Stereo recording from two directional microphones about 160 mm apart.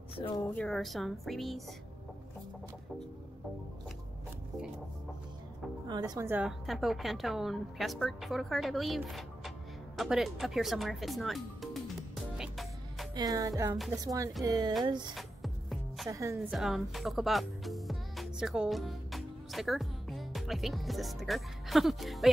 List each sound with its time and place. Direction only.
0.1 s a woman's voice: 35° left (ahead or behind)
0.5 s a woman's voice: 5° left (ahead or behind)
5.9 s speech: 25° right (ahead or behind)
6.6 s a woman's voice: centre (ahead or behind)
12.4 s music: centre (ahead or behind)
13.1 s speech: 25° right (ahead or behind)
15.1 s music: centre (ahead or behind)
16.1 s speech: 20° right (ahead or behind)
16.4 s speech: centre (ahead or behind)